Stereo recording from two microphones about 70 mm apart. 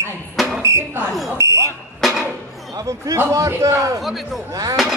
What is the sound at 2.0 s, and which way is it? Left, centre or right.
Music, centre.